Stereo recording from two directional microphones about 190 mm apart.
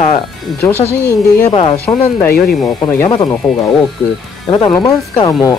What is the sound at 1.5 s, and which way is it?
Speech, 30° left (ahead or behind).